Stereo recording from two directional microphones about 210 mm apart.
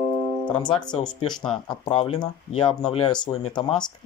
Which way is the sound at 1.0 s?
20° left (ahead or behind).